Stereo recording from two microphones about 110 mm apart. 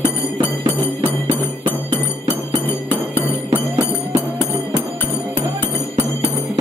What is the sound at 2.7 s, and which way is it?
Music, 20° left (ahead or behind).